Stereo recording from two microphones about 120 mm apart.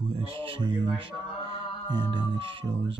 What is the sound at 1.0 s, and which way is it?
Music, 40° right (ahead or behind).